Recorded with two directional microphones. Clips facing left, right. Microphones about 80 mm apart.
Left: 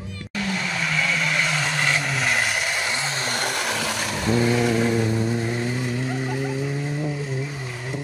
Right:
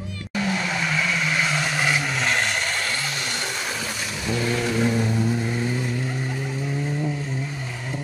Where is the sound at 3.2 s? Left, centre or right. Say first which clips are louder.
Left 3 dB; left.